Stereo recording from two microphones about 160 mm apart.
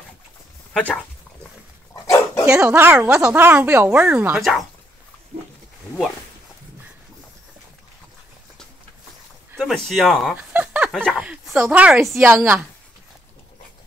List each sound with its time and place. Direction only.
0.7 s speech: 5° left (ahead or behind)
2.0 s dog: 15° left (ahead or behind)
2.4 s speech: 15° right (ahead or behind)
9.6 s speech: centre (ahead or behind)
10.3 s a sound: 10° right (ahead or behind)
11.6 s speech: 10° right (ahead or behind)